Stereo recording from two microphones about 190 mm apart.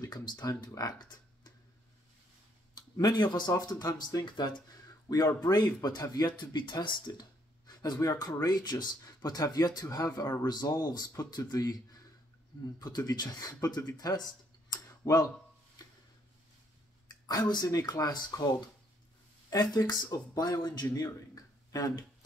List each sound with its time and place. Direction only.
0.0 s speech: 20° left (ahead or behind)
2.7 s speech: 20° left (ahead or behind)
17.3 s speech: 20° left (ahead or behind)
19.5 s speech: 20° left (ahead or behind)